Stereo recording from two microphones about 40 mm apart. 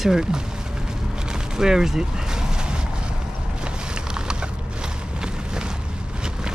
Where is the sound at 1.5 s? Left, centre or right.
Centre.